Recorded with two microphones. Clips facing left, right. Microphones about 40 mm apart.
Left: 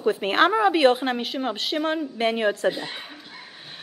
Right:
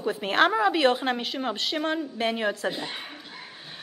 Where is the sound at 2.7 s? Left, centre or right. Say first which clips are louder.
Left 4 dB; centre.